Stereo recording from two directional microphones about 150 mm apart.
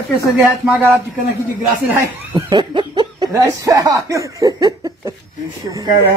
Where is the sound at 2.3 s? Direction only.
30° right (ahead or behind).